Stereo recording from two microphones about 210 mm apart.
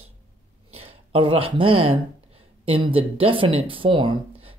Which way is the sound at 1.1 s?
25° right (ahead or behind).